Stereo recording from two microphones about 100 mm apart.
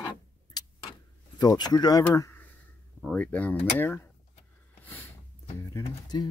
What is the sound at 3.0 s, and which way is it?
Speech, 15° left (ahead or behind).